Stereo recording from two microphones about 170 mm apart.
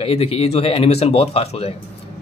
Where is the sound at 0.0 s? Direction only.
35° left (ahead or behind).